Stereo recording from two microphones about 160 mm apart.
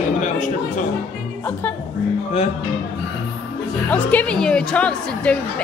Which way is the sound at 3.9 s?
10° left (ahead or behind).